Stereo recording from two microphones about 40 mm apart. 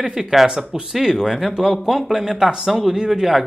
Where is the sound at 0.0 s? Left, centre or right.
Centre.